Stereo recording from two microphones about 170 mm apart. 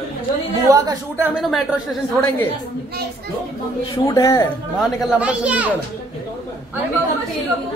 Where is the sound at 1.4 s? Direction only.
Centre (ahead or behind).